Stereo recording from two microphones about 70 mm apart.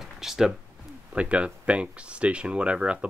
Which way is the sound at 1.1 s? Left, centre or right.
Centre.